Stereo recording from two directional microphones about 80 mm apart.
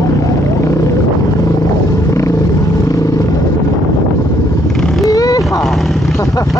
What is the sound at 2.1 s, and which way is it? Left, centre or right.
Vehicle, left.